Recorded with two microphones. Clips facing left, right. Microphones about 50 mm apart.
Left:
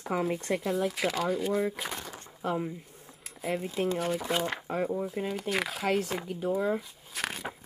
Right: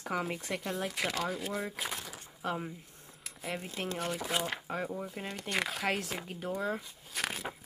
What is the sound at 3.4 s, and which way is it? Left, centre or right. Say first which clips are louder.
Speech: left 8 dB; centre.